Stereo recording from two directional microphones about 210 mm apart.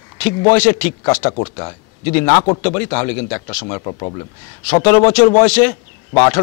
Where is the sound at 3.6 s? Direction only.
25° left (ahead or behind).